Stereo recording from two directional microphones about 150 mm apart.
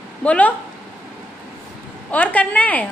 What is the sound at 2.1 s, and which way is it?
Speech, 10° left (ahead or behind).